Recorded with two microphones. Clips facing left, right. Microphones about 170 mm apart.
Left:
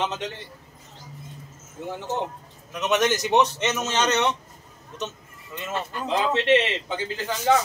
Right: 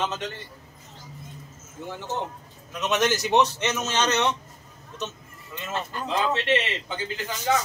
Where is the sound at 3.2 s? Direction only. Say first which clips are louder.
Left 1 dB; centre (ahead or behind).